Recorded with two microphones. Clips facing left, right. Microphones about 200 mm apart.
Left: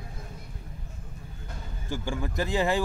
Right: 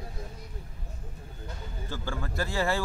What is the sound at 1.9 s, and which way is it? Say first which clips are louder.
Speech: left 4 dB; 15° left (ahead or behind).